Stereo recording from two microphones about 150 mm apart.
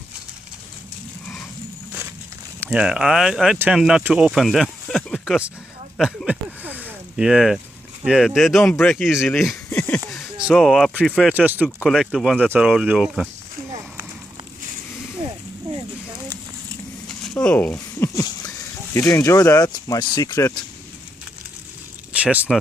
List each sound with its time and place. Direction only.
2.7 s speech: 5° right (ahead or behind)
9.7 s a sound: 10° left (ahead or behind)
10.3 s speech: centre (ahead or behind)
11.6 s speech: centre (ahead or behind)
17.2 s a sound: 5° left (ahead or behind)
18.9 s speech: 20° left (ahead or behind)
22.1 s speech: 10° right (ahead or behind)